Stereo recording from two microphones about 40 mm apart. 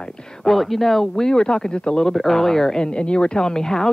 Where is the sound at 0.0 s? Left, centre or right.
Centre.